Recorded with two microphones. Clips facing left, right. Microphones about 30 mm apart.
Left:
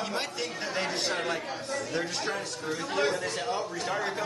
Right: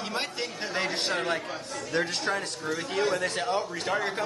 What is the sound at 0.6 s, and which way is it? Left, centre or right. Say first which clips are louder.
Speech: right 2 dB; centre.